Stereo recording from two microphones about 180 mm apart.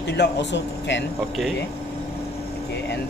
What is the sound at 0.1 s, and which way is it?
Speech, 70° left (ahead or behind).